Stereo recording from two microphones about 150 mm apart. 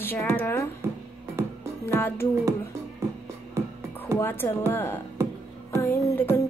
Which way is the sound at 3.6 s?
20° right (ahead or behind).